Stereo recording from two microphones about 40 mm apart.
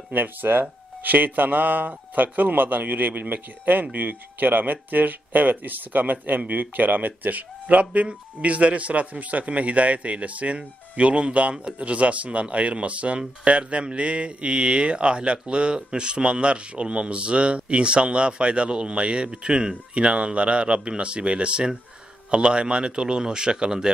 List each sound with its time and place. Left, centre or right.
0.1 s speech: right; by 23.9 s centre